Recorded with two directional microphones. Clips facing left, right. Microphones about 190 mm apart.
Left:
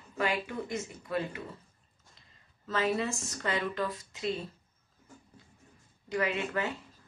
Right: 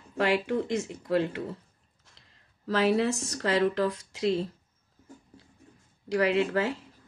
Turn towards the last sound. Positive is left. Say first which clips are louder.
# right 7 dB
turn(degrees=-75)  # may be behind; listen again after turning